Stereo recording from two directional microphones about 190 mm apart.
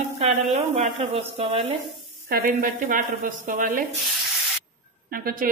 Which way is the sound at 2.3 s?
45° right (ahead or behind).